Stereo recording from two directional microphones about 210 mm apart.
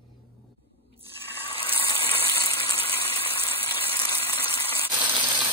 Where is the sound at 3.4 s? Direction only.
25° left (ahead or behind).